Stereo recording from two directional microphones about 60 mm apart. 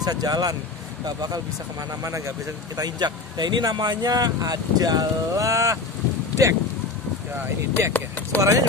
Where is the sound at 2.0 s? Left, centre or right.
Right.